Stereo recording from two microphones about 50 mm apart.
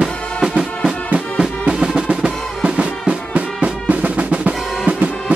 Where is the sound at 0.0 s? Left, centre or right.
Centre.